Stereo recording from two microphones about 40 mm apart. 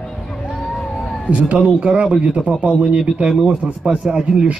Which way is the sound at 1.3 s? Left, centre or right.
Right.